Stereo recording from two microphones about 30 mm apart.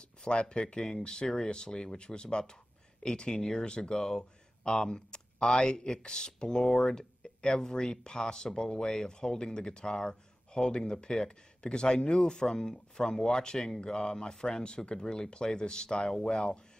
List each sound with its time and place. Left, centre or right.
0.0 s speech: left